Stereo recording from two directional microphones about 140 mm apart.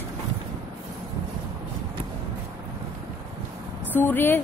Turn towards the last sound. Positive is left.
turn(degrees=15)  # may be behind; listen again after turning